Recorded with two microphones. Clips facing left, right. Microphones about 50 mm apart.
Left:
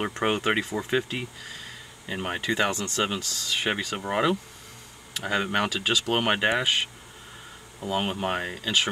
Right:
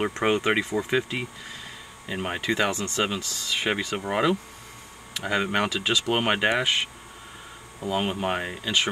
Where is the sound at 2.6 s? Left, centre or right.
Centre.